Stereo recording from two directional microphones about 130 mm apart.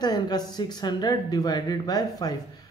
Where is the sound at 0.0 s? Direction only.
30° left (ahead or behind).